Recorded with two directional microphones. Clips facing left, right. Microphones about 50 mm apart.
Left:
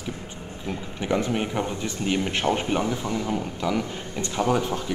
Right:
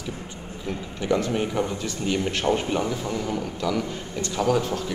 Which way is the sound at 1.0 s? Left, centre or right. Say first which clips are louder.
Right 1 dB; centre.